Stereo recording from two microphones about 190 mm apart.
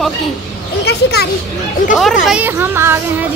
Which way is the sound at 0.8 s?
55° left (ahead or behind).